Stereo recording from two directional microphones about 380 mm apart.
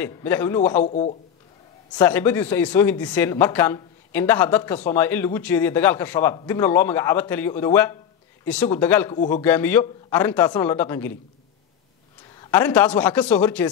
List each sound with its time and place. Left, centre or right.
0.0 s speech: centre
0.8 s speech: centre
1.9 s speech: centre
12.4 s speech: centre